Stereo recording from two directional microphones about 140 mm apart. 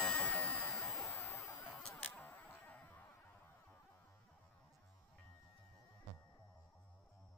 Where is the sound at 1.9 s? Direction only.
15° left (ahead or behind).